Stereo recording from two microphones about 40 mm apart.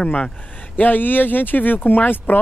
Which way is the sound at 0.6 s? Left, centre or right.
Left.